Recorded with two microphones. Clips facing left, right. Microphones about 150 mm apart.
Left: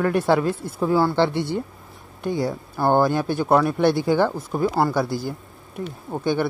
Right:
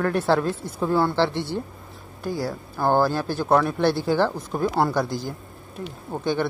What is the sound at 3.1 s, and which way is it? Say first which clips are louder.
Speech: left 2 dB; 15° left (ahead or behind).